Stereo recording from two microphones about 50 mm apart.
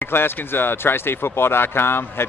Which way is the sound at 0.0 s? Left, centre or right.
Left.